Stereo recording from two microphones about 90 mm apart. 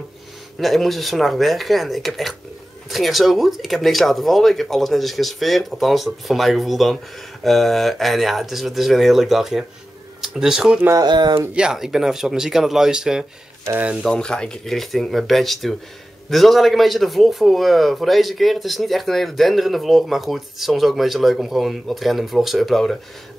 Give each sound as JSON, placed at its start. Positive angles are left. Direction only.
{"t": 0.6, "sound": "a man's voice", "side_deg": 0}
{"t": 11.0, "sound": "speech", "side_deg": -55}
{"t": 11.5, "sound": "a man's voice", "side_deg": -5}
{"t": 14.0, "sound": "a man's voice", "side_deg": 10}